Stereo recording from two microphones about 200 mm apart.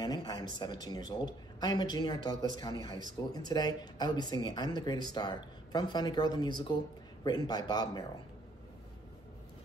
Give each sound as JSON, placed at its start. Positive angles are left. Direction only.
{"t": 0.0, "sound": "speech", "side_deg": 20}